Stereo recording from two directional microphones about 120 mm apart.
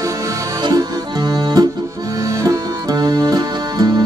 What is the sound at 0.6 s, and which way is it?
Music, 35° right (ahead or behind).